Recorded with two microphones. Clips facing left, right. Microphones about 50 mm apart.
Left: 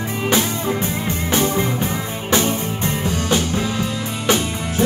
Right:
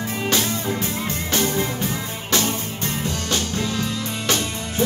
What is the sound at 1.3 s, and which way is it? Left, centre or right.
Music, centre.